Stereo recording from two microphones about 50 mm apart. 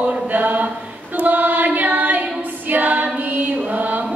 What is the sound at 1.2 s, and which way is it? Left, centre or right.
Chant, right.